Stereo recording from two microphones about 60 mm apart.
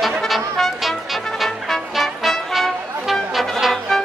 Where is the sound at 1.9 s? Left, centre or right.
Centre.